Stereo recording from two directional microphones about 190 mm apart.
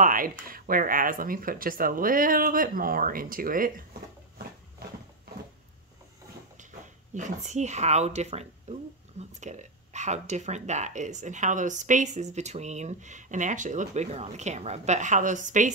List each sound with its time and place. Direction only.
0.0 s speech: 45° right (ahead or behind)
7.2 s speech: 40° right (ahead or behind)